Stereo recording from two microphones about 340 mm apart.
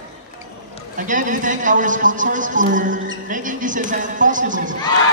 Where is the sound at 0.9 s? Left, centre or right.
Right.